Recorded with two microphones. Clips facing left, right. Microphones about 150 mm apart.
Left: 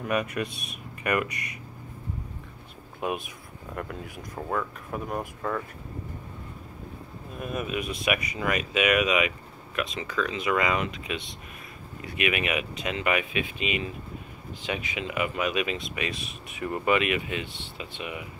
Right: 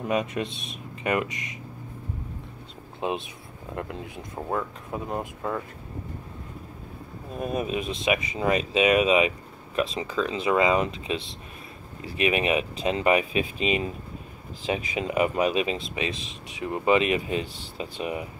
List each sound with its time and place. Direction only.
0.0 s speech: 20° right (ahead or behind)
3.0 s speech: 25° right (ahead or behind)
7.3 s speech: 35° right (ahead or behind)